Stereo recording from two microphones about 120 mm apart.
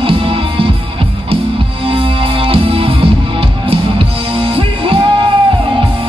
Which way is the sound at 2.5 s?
50° right (ahead or behind).